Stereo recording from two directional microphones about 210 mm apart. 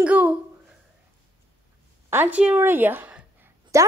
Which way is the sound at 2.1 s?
10° right (ahead or behind).